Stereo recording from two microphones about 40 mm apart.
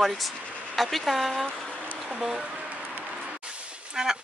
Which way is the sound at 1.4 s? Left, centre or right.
Centre.